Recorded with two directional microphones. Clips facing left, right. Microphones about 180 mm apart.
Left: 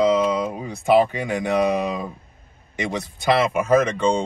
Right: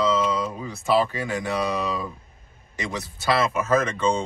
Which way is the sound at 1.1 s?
20° left (ahead or behind).